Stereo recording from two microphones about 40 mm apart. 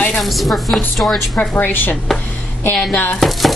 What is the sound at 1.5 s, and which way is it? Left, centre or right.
Speech, left.